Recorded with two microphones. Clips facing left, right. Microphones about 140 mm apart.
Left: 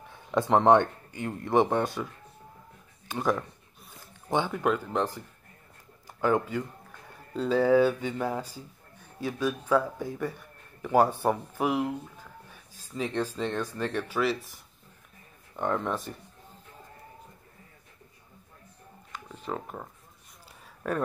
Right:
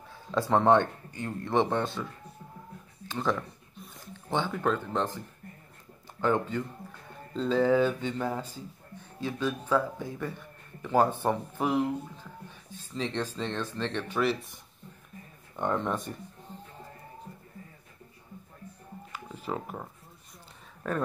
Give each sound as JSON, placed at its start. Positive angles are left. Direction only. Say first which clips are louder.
{"t": 0.3, "sound": "speech", "louder": "left 2 dB", "side_deg": 20}
{"t": 3.1, "sound": "speech", "louder": "left 2 dB", "side_deg": 15}
{"t": 6.2, "sound": "speech", "louder": "left 1 dB", "side_deg": 10}
{"t": 15.5, "sound": "speech", "louder": "even", "side_deg": 0}
{"t": 19.1, "sound": "a sound", "louder": "even", "side_deg": -5}
{"t": 20.8, "sound": "speech", "louder": "left 1 dB", "side_deg": 10}